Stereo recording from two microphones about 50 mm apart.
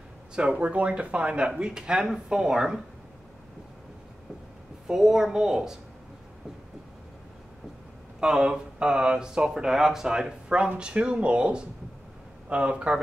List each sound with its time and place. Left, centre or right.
0.4 s speech: right
4.8 s speech: centre
8.2 s speech: centre